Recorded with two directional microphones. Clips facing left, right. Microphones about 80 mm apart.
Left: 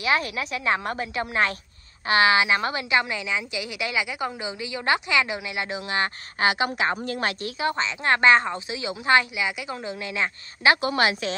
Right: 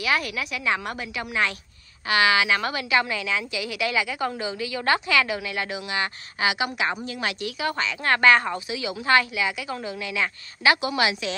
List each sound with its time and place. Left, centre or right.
0.0 s a woman's voice: left
5.9 s a woman's voice: left
7.7 s a woman's voice: left